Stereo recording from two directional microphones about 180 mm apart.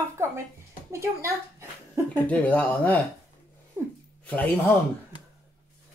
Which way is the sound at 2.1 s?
10° left (ahead or behind).